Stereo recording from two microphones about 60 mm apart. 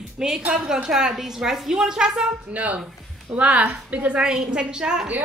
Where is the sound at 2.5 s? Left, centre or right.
Right.